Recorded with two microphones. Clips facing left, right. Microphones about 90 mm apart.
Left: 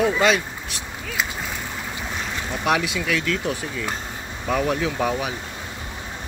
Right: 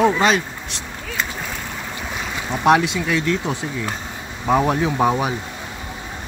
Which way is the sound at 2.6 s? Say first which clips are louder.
Right 7 dB; 30° right (ahead or behind).